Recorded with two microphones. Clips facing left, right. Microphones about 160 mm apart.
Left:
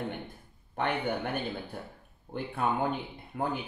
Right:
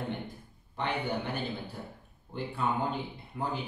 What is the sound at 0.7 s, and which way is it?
Speech, 55° left (ahead or behind).